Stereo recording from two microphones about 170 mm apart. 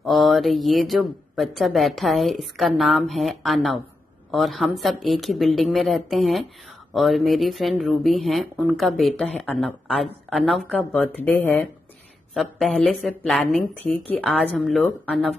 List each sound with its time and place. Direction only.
0.0 s speech: centre (ahead or behind)